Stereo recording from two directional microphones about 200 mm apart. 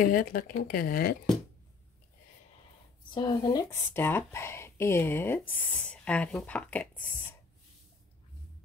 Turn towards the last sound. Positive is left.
turn(degrees=5)  # may be behind; listen again after turning